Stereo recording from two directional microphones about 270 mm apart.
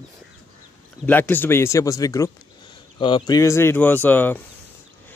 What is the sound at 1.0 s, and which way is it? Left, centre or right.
Speech, centre.